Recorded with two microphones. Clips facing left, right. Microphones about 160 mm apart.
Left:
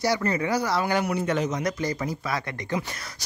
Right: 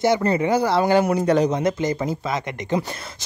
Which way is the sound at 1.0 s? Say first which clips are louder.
Right 7 dB; 40° right (ahead or behind).